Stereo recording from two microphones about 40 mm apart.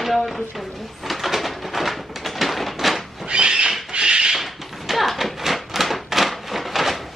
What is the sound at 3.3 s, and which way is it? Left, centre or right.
Cat, right.